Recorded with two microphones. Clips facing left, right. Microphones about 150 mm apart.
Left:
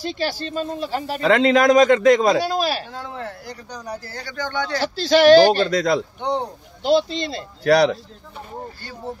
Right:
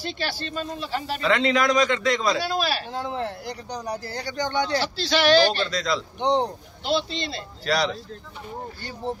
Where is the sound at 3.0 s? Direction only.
25° right (ahead or behind).